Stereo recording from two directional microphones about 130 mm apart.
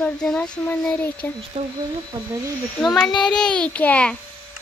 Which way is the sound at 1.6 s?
45° right (ahead or behind).